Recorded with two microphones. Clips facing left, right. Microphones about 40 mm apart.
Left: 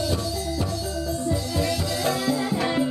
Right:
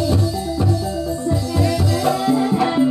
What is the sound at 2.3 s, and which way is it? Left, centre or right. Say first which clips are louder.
Music: right 7 dB; centre.